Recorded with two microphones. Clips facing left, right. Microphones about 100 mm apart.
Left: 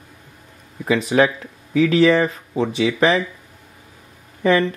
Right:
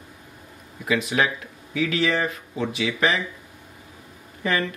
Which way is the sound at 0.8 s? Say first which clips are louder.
Left 6 dB; 35° left (ahead or behind).